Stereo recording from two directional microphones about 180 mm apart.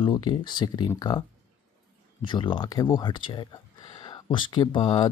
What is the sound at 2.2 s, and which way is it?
Speech, 25° left (ahead or behind).